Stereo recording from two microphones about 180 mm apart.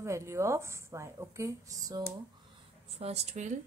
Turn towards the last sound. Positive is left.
turn(degrees=-40)  # may be behind; listen again after turning